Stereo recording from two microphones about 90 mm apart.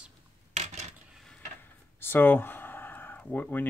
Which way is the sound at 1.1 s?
Centre (ahead or behind).